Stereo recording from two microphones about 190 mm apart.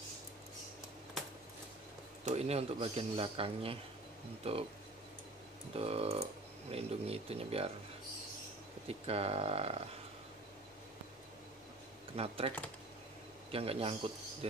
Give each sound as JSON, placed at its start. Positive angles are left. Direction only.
{"t": 2.2, "sound": "speech", "side_deg": -35}
{"t": 5.7, "sound": "speech", "side_deg": -30}
{"t": 8.8, "sound": "speech", "side_deg": -30}
{"t": 12.2, "sound": "speech", "side_deg": -30}